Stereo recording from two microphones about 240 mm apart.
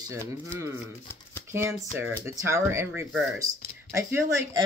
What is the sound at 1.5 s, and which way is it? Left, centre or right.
Speech, centre.